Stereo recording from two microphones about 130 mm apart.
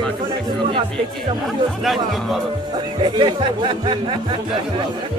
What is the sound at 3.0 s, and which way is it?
Speech, 35° right (ahead or behind).